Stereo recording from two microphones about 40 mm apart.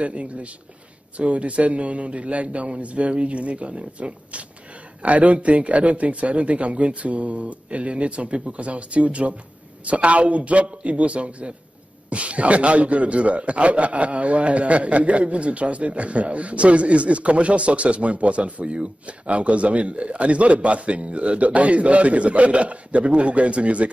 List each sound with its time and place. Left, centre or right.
0.0 s a man's voice: right